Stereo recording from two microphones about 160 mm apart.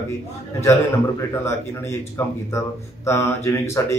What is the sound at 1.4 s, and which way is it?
Speech, 15° left (ahead or behind).